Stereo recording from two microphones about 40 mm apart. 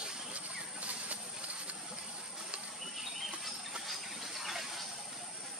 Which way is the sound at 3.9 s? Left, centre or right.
Centre.